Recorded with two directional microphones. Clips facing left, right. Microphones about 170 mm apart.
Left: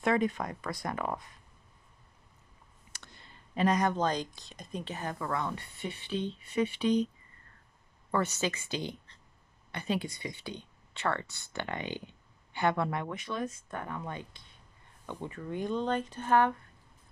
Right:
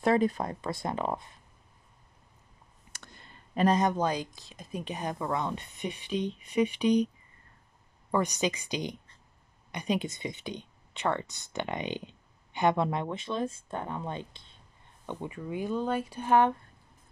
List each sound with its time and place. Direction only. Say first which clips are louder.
0.0 s speech: right 3 dB; 35° right (ahead or behind)
2.9 s clicking: right 3 dB; 50° right (ahead or behind)
3.6 s speech: right 2 dB; 25° right (ahead or behind)
3.9 s speech: right 1 dB; 10° right (ahead or behind)
8.1 s speech: right 3 dB; 15° right (ahead or behind)
15.0 s speech: right 2 dB; 10° right (ahead or behind)